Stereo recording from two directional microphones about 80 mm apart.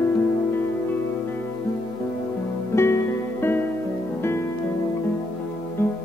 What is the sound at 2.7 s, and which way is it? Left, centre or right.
Music, left.